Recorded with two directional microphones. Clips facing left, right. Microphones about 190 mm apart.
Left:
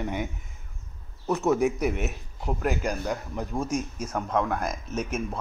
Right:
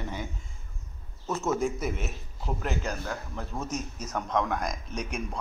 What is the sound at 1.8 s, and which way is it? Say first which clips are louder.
Speech: left 5 dB; 70° left (ahead or behind).